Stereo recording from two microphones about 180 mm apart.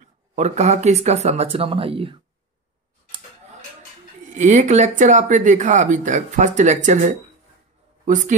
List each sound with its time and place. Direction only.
0.4 s speech: 40° right (ahead or behind)
4.3 s speech: 45° right (ahead or behind)